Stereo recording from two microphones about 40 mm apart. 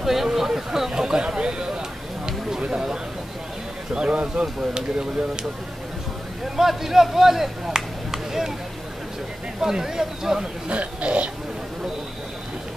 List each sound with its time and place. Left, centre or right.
0.0 s a sound: centre
2.7 s a sound: centre
3.9 s speech: right
6.5 s speech: centre
9.6 s speech: centre
10.7 s speech: right